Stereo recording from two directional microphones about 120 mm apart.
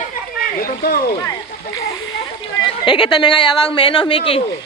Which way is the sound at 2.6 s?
45° left (ahead or behind).